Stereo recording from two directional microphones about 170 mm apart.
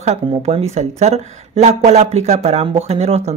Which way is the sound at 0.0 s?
40° right (ahead or behind).